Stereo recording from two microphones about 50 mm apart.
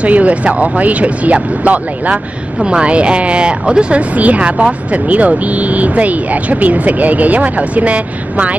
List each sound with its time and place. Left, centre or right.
0.0 s speech: right